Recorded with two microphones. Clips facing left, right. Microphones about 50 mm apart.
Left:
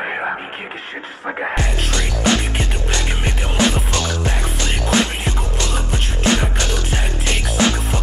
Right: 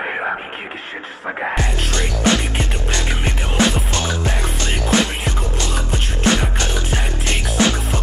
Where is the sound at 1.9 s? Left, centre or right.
Right.